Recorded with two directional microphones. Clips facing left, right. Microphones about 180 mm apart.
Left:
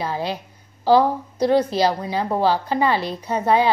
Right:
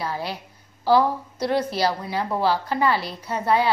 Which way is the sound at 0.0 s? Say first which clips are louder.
Left 4 dB; 20° left (ahead or behind).